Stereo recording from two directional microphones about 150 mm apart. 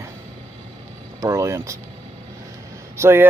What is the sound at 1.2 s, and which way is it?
Vehicle, 20° right (ahead or behind).